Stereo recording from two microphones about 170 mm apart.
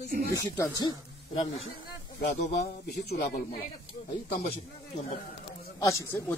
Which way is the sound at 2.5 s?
70° left (ahead or behind).